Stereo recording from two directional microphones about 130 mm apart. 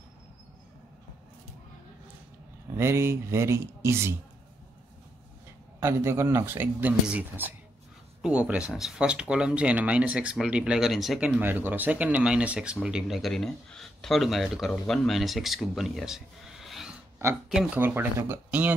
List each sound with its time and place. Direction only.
2.7 s speech: 20° right (ahead or behind)
5.8 s speech: 20° right (ahead or behind)
17.7 s speech: 15° right (ahead or behind)